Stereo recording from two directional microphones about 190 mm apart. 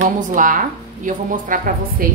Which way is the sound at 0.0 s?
45° right (ahead or behind).